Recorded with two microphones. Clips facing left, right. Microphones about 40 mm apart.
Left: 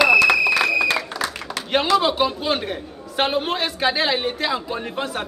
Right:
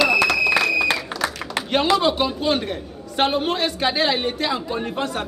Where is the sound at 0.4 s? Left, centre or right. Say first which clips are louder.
Even; centre.